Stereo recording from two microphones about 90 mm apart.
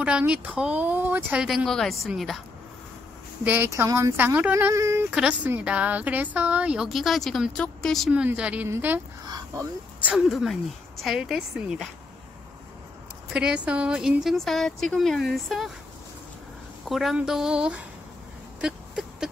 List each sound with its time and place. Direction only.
0.3 s speech: 10° right (ahead or behind)
1.4 s speech: 10° right (ahead or behind)
1.7 s a woman's voice: 5° left (ahead or behind)
3.4 s speech: 20° right (ahead or behind)
4.2 s speech: 20° right (ahead or behind)
5.1 s speech: 10° right (ahead or behind); by 8.1 s 5° left (ahead or behind)
8.1 s speech: 15° right (ahead or behind)
10.1 s a woman's voice: centre (ahead or behind)
13.3 s a woman's voice: 10° right (ahead or behind)
16.8 s speech: centre (ahead or behind)
18.6 s a sound: 5° right (ahead or behind)